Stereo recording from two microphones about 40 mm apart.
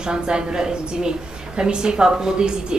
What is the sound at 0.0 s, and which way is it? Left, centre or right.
Speech, right.